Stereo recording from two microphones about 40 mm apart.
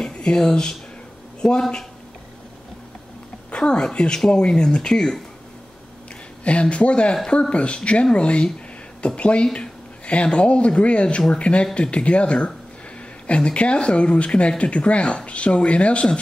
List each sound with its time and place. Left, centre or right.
0.0 s a sound: left
0.4 s speech: centre
3.4 s speech: left
6.4 s speech: left